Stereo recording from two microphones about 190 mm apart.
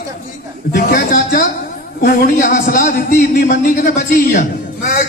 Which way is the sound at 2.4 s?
40° left (ahead or behind).